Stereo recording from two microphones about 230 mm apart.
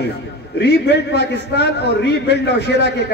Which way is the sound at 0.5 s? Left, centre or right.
Left.